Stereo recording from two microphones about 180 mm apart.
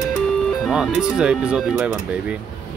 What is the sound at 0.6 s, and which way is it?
Speech, 5° right (ahead or behind).